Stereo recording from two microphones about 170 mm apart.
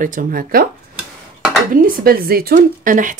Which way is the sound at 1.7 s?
55° right (ahead or behind).